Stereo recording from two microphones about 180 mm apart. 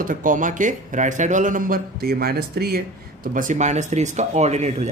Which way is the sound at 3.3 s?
45° right (ahead or behind).